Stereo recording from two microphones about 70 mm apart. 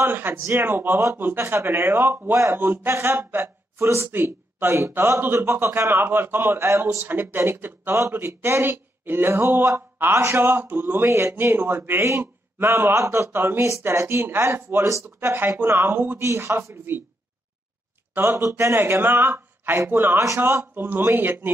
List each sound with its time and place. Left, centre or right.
0.0 s a man's voice: right
7.3 s a man's voice: right
16.2 s a man's voice: right
18.1 s a man's voice: right